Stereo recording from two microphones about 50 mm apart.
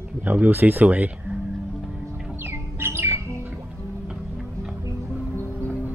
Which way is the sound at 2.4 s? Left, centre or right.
Right.